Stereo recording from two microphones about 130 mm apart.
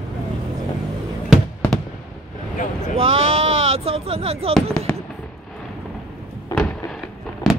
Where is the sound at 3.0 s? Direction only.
50° right (ahead or behind).